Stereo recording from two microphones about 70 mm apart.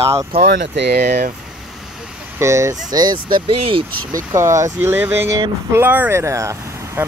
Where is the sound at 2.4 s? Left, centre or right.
Right.